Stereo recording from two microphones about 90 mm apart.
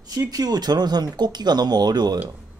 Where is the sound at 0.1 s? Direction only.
45° right (ahead or behind).